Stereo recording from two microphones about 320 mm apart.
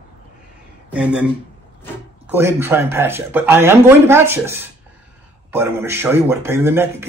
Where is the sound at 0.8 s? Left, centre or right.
Centre.